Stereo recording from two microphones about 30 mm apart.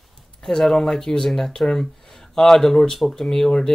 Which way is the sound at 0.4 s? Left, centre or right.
Centre.